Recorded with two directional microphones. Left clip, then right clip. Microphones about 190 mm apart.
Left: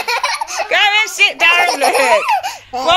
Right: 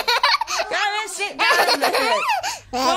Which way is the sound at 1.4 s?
45° right (ahead or behind).